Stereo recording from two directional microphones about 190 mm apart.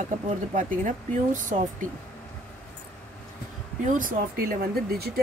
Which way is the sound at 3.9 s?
50° right (ahead or behind).